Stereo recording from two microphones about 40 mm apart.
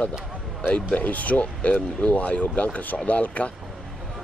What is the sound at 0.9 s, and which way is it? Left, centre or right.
Speech, left.